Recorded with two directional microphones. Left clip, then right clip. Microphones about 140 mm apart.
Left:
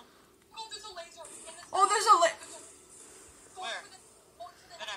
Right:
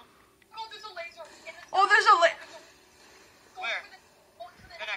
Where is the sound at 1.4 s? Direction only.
45° left (ahead or behind).